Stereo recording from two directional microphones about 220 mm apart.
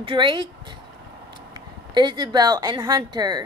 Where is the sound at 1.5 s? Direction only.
20° right (ahead or behind).